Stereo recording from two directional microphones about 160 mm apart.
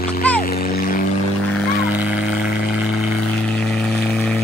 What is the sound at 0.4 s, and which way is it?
Music, 70° left (ahead or behind).